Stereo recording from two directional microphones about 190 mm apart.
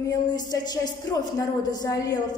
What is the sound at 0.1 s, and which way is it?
A woman's voice, 20° left (ahead or behind).